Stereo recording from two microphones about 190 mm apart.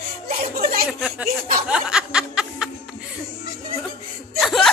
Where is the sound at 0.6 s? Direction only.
50° right (ahead or behind).